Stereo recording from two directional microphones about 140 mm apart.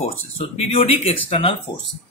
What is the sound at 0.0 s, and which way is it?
Speech, 50° left (ahead or behind).